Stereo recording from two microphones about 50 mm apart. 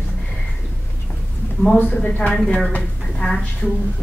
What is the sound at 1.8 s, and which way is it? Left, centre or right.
Speech, left.